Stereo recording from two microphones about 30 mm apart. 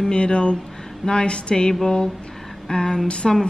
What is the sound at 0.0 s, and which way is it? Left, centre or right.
A woman's voice, left.